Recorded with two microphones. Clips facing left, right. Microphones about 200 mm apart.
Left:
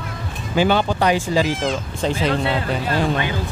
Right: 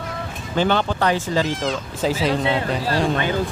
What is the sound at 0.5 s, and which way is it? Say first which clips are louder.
Speech: left 2 dB; 10° left (ahead or behind).